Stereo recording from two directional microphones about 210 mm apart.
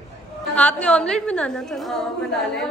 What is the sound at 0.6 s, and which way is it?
A woman's voice, 5° left (ahead or behind).